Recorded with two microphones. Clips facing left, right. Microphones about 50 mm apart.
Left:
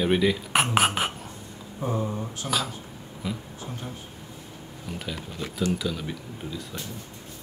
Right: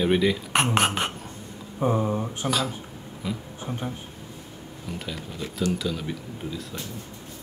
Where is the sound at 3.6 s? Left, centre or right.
Right.